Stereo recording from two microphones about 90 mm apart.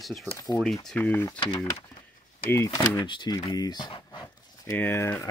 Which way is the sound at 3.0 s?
65° left (ahead or behind).